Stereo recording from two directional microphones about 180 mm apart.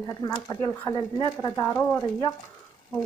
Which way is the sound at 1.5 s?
15° left (ahead or behind).